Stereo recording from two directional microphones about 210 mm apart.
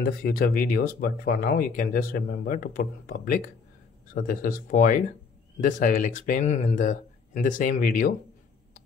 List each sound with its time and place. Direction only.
0.0 s speech: 45° left (ahead or behind)